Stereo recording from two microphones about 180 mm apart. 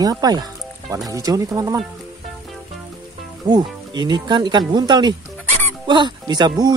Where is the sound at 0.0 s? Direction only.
20° right (ahead or behind).